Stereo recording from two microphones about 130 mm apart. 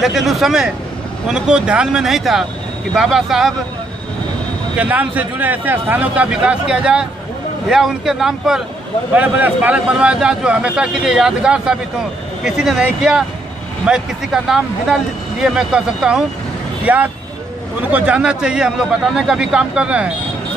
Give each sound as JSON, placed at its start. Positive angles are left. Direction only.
{"t": 0.0, "sound": "speech", "side_deg": 0}
{"t": 4.7, "sound": "speech", "side_deg": -10}